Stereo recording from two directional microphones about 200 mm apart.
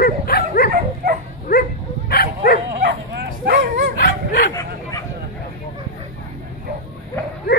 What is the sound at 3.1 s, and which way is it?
Bow-wow, 55° right (ahead or behind).